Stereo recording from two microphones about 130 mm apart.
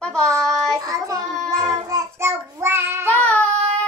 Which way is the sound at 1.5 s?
25° right (ahead or behind).